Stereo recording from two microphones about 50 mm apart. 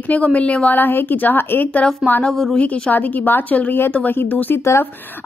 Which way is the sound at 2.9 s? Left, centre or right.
Left.